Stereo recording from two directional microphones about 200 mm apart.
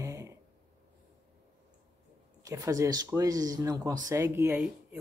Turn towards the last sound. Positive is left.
turn(degrees=0)  # may be behind; listen again after turning